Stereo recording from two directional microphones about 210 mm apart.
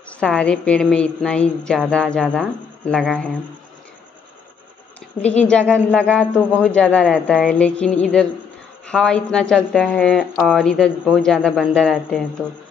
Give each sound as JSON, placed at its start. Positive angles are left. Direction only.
{"t": 0.2, "sound": "a woman's voice", "side_deg": 5}
{"t": 5.2, "sound": "speech", "side_deg": 30}
{"t": 5.5, "sound": "a woman's voice", "side_deg": 5}